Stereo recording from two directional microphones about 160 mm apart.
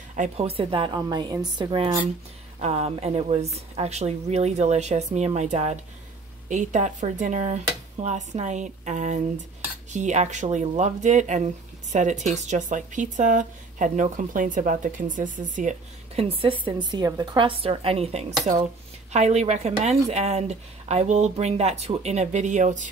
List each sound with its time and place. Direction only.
0.1 s a woman's voice: 45° right (ahead or behind); by 2.0 s 30° right (ahead or behind)
2.6 s a woman's voice: 40° right (ahead or behind)
16.2 s a woman's voice: 35° right (ahead or behind)